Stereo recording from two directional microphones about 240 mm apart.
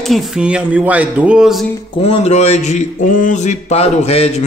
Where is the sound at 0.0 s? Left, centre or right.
Centre.